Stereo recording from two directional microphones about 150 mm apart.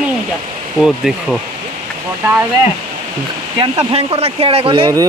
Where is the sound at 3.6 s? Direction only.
35° right (ahead or behind).